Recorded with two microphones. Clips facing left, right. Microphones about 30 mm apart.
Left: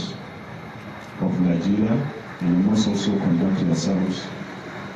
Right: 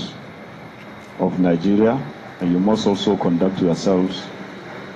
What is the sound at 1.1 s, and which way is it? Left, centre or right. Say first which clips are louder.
A man's voice: right 4 dB; right.